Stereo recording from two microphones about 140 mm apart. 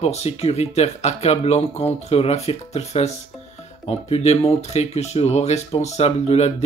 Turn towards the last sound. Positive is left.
turn(degrees=50)  # may be behind; listen again after turning